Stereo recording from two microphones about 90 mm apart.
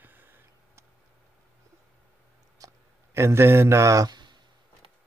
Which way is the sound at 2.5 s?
35° right (ahead or behind).